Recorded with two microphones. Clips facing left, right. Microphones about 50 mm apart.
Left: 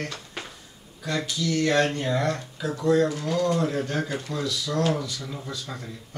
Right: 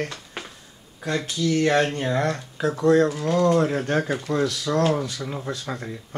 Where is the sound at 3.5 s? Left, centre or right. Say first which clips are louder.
Right 5 dB; right.